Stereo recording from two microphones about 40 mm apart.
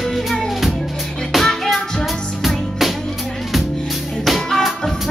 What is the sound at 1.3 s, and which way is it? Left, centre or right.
Music, centre.